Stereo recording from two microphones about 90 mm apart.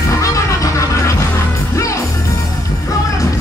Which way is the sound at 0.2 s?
35° left (ahead or behind).